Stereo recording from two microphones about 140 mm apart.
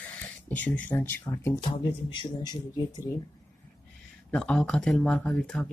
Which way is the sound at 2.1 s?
30° left (ahead or behind).